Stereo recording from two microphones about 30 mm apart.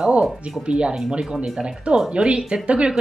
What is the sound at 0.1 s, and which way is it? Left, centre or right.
Speech, right.